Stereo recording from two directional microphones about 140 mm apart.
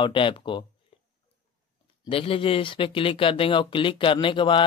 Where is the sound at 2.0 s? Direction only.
40° left (ahead or behind).